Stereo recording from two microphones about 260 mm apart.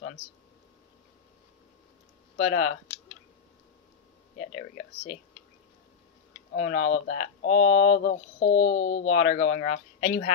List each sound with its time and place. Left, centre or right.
2.4 s speech: left
6.5 s speech: left
7.9 s a sound: left
8.7 s speech: left